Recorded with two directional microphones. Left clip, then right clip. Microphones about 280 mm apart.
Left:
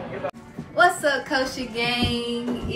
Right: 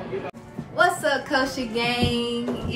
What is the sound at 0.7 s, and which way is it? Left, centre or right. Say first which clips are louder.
A woman's voice: left 2 dB; centre.